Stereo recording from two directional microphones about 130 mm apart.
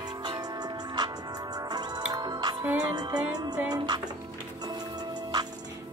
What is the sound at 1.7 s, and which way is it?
Music, 30° right (ahead or behind).